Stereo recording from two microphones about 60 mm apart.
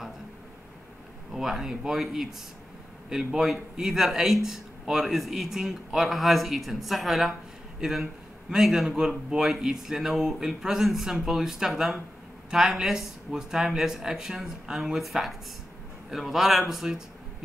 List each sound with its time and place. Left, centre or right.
1.3 s speech: centre
3.3 s speech: centre
8.5 s speech: centre